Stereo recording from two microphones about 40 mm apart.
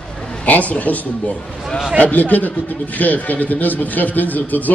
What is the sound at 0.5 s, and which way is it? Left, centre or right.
Speech, left.